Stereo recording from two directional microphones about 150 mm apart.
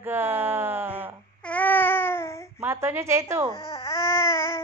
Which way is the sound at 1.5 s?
10° left (ahead or behind).